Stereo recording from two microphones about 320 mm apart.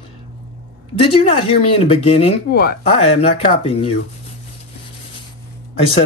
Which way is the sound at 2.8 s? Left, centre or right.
Centre.